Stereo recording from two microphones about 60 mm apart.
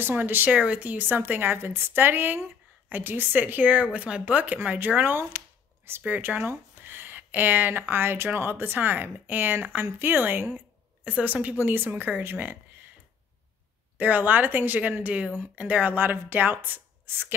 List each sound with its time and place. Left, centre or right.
0.0 s speech: right
0.6 s speech: right
11.1 s speech: right
11.6 s speech: right
13.9 s speech: right